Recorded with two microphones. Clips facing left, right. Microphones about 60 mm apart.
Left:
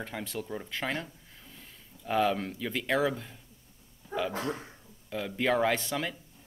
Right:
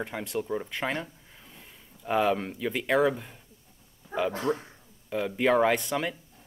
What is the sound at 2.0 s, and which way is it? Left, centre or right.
Speech, centre.